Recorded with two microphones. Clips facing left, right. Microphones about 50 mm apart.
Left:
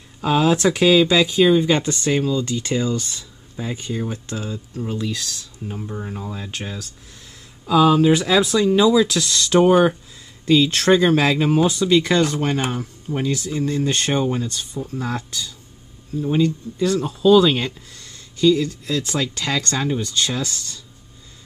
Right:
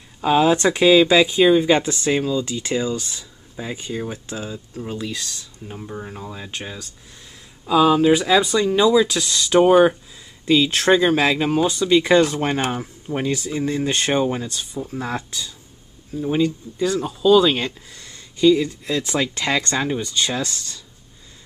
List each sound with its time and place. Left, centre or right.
0.2 s speech: centre
12.0 s speech: centre
17.9 s speech: centre